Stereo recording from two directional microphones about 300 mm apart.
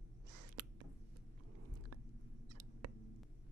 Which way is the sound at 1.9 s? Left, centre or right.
Right.